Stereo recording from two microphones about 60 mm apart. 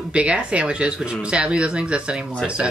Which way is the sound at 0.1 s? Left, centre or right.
Centre.